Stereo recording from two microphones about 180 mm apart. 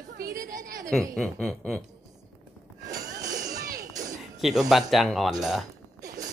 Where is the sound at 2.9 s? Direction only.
20° right (ahead or behind).